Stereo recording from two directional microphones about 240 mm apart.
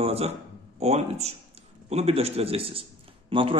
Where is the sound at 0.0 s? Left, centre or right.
Right.